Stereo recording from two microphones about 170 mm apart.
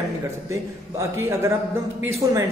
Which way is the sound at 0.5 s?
15° right (ahead or behind).